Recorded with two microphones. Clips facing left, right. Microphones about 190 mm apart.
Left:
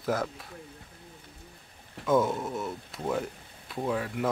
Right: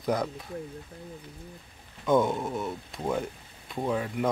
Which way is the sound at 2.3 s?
15° right (ahead or behind).